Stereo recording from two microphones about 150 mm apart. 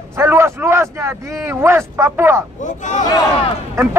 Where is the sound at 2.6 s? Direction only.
55° left (ahead or behind).